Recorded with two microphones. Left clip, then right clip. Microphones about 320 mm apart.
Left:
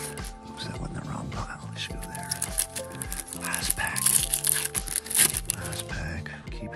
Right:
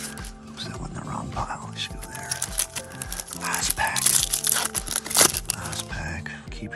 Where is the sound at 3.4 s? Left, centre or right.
Centre.